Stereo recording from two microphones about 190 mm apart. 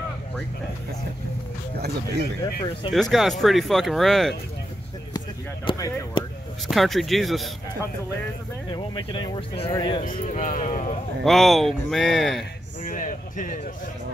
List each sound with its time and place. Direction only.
2.9 s speech: centre (ahead or behind)
5.7 s speech: 20° left (ahead or behind)
6.7 s speech: centre (ahead or behind)
8.7 s speech: 25° left (ahead or behind)
10.0 s speech: 40° left (ahead or behind)
11.2 s speech: centre (ahead or behind)
12.8 s a sound: 45° left (ahead or behind)